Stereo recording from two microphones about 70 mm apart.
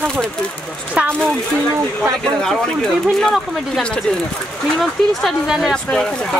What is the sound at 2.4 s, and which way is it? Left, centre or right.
Speech, centre.